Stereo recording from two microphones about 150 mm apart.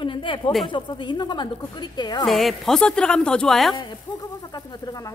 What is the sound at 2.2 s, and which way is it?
Speech, centre (ahead or behind).